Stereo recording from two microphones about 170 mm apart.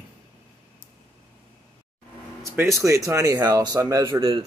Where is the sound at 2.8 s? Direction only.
20° right (ahead or behind).